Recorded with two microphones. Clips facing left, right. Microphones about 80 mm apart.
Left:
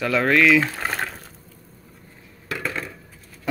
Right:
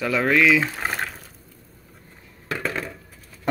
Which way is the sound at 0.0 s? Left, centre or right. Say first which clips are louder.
Left 1 dB; centre.